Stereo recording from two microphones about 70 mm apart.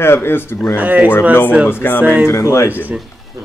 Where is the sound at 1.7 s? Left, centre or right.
Left.